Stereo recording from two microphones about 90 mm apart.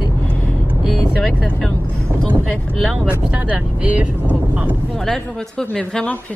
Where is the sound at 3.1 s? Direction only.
15° right (ahead or behind).